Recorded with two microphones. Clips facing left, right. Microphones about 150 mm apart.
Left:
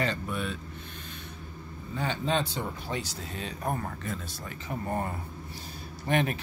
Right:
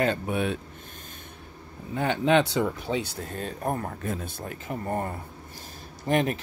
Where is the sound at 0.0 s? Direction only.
55° right (ahead or behind).